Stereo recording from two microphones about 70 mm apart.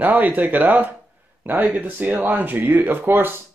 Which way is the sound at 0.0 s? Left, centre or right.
Right.